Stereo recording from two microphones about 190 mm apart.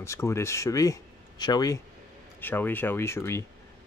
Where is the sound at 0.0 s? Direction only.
15° left (ahead or behind).